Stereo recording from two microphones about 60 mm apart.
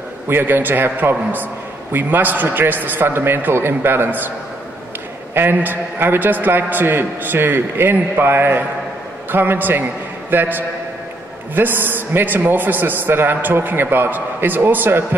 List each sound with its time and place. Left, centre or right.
0.3 s a man's voice: right
5.3 s a man's voice: right